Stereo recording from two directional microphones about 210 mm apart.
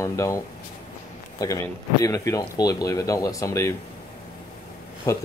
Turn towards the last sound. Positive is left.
turn(degrees=15)  # may be behind; listen again after turning